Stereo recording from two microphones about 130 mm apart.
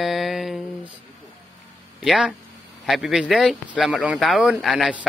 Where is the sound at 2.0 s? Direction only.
5° right (ahead or behind).